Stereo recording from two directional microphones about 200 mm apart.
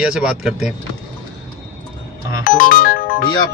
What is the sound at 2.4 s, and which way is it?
Music, 40° left (ahead or behind).